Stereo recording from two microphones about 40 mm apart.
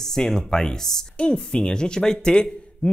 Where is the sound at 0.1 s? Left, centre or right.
Centre.